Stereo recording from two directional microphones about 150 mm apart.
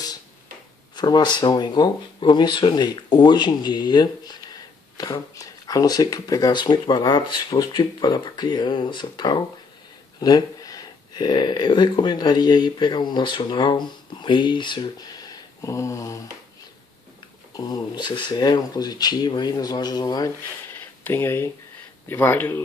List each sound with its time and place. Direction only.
0.9 s speech: 30° left (ahead or behind)
17.6 s speech: 25° left (ahead or behind)